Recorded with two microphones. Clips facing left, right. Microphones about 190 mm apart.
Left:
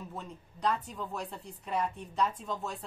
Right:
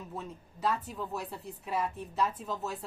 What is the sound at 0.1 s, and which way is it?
Speech, 5° right (ahead or behind).